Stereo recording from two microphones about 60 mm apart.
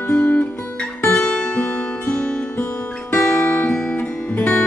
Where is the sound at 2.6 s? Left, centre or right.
Left.